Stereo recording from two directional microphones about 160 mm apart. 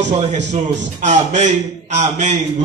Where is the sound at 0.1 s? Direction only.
45° right (ahead or behind).